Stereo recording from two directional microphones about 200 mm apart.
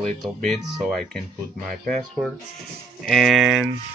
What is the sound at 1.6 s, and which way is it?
Speech, centre (ahead or behind).